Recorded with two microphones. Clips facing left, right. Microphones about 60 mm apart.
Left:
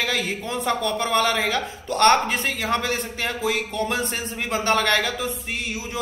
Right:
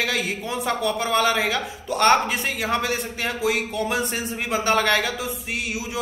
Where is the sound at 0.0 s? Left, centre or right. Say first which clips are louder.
Even; centre.